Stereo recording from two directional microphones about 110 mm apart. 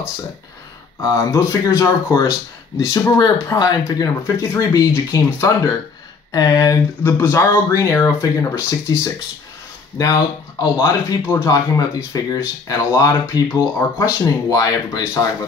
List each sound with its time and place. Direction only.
1.0 s speech: 30° left (ahead or behind)
7.0 s speech: 20° left (ahead or behind)
9.9 s speech: 35° left (ahead or behind)